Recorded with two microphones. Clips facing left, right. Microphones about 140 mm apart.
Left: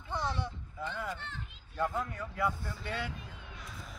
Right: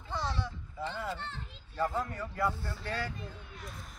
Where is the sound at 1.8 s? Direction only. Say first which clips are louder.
Right 1 dB; centre (ahead or behind).